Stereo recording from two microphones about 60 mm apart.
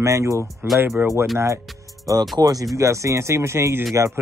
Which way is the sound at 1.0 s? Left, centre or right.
Right.